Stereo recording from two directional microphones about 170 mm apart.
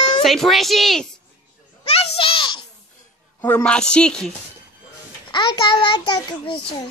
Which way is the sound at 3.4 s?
15° left (ahead or behind).